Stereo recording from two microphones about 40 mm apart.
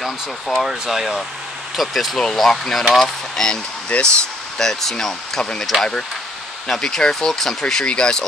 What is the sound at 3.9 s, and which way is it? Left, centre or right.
Speech, left.